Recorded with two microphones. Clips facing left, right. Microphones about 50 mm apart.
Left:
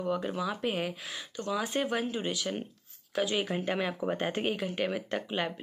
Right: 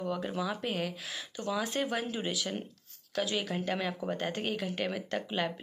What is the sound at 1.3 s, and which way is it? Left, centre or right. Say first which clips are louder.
Speech: left 2 dB; centre.